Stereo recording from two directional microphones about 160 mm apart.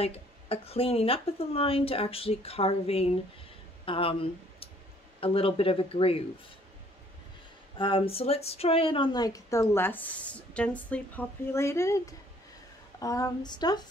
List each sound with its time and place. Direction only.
0.0 s speech: 40° left (ahead or behind)
7.7 s speech: 35° left (ahead or behind)